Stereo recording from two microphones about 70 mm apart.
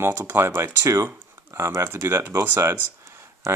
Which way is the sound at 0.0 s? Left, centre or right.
Right.